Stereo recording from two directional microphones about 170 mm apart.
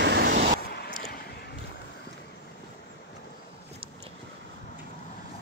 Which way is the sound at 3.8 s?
35° right (ahead or behind).